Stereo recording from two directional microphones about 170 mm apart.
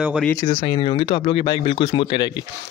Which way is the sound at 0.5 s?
30° left (ahead or behind).